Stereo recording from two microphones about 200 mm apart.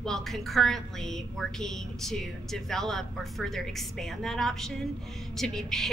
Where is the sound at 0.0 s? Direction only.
Centre (ahead or behind).